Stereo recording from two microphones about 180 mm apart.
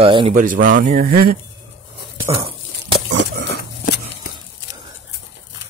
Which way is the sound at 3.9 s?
70° left (ahead or behind).